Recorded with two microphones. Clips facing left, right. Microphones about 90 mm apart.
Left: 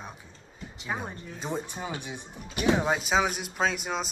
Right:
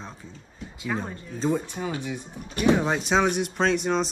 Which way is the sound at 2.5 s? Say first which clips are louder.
Right 3 dB; 5° left (ahead or behind).